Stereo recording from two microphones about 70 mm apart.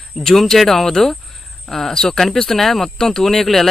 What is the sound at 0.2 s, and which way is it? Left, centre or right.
Speech, centre.